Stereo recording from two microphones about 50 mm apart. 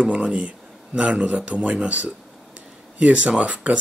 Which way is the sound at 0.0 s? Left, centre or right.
Right.